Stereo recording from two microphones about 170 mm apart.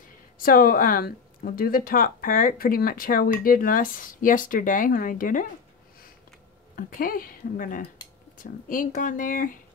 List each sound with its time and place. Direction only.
0.4 s speech: 60° left (ahead or behind)
6.8 s speech: 55° left (ahead or behind)